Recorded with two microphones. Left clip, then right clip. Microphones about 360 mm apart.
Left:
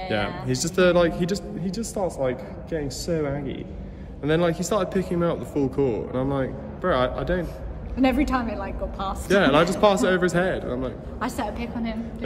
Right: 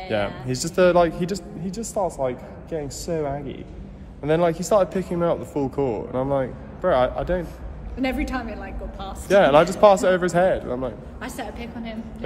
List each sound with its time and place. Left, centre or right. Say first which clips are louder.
0.1 s a man's voice: right 2 dB; centre
8.0 s a woman's voice: left 4 dB; centre
9.3 s a man's voice: right 4 dB; centre
11.1 s a woman's voice: left 4 dB; centre